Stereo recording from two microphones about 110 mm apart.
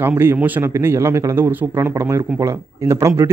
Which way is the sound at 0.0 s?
20° right (ahead or behind).